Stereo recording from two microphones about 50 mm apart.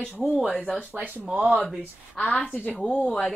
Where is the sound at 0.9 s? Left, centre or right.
Right.